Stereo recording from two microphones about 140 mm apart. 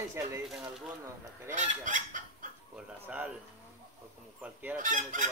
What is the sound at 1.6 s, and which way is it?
Speech, 65° right (ahead or behind).